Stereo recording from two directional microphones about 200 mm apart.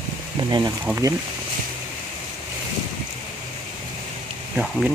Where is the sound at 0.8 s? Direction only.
10° right (ahead or behind).